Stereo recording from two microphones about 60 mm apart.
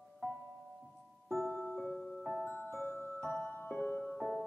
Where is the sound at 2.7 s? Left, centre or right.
Left.